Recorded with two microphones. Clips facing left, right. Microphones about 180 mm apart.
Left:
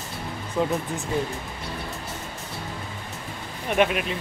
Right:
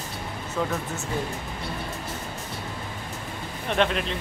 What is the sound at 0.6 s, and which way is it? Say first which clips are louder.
Speech: left 3 dB; 20° left (ahead or behind).